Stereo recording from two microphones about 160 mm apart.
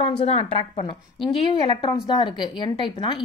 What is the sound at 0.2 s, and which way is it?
A woman's voice, 40° left (ahead or behind).